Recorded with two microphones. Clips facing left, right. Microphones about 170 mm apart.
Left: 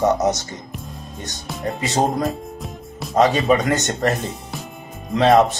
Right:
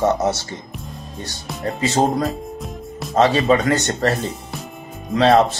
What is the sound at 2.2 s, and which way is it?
Music, centre (ahead or behind).